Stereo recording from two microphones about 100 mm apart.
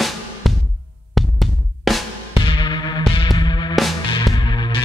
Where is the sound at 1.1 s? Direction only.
Centre (ahead or behind).